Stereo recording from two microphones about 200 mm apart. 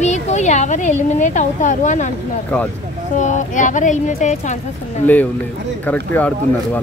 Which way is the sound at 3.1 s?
40° left (ahead or behind).